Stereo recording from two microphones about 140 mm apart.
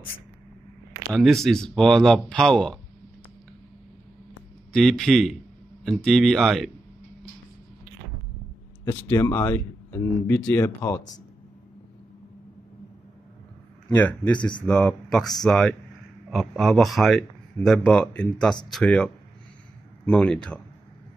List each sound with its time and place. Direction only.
1.1 s speech: centre (ahead or behind)
4.7 s speech: centre (ahead or behind)
9.3 s speech: 15° left (ahead or behind)
13.8 s speech: 10° left (ahead or behind)
20.1 s speech: 5° left (ahead or behind)